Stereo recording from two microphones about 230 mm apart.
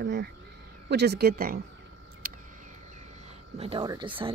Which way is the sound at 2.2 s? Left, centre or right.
Right.